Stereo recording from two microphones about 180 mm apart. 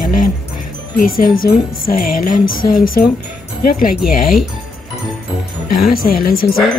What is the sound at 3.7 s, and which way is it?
Speech, 50° left (ahead or behind).